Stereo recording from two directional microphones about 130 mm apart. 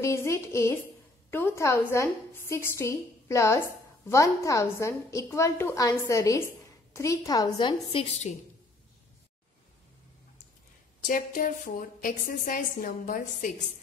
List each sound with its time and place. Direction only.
0.0 s a woman's voice: 20° left (ahead or behind)
8.0 s a woman's voice: 60° left (ahead or behind)
11.1 s a woman's voice: 90° left